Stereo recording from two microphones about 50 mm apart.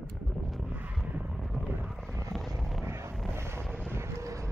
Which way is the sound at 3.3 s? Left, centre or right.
Right.